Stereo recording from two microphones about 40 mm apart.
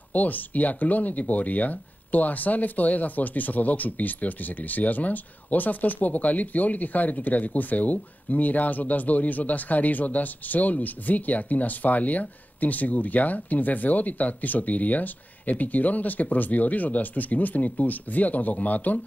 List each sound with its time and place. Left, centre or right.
0.1 s speech: left